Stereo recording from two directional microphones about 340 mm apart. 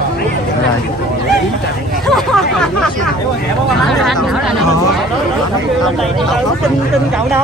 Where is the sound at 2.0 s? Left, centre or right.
Centre.